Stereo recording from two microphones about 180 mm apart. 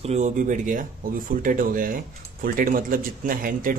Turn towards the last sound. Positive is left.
turn(degrees=-50)  # may be behind; listen again after turning